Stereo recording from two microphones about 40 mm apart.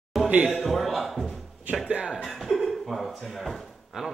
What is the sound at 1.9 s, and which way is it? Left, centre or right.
Speech, right.